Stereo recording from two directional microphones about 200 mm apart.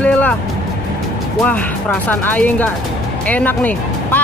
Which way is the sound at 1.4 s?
5° left (ahead or behind).